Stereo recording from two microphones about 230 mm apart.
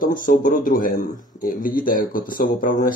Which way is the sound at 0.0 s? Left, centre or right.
Left.